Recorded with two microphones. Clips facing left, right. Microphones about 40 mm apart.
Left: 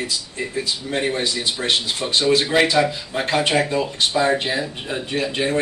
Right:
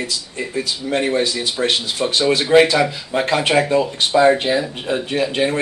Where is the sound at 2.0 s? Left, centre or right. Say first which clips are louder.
Right 4 dB; centre.